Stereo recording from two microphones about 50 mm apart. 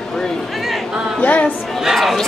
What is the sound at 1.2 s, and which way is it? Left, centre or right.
Music, left.